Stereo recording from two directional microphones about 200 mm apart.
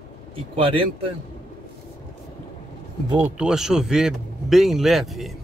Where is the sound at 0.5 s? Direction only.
25° right (ahead or behind).